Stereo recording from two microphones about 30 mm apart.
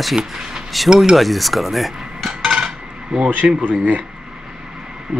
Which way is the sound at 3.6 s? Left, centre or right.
Right.